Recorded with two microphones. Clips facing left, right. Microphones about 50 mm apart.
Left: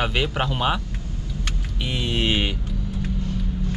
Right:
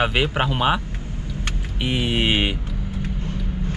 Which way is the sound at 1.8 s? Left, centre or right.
Centre.